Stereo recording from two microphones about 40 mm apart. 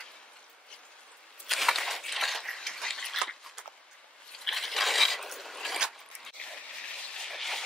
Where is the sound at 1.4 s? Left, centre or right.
Centre.